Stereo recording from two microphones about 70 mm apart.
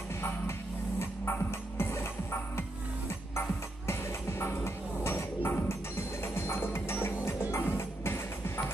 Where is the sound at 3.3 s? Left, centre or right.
Left.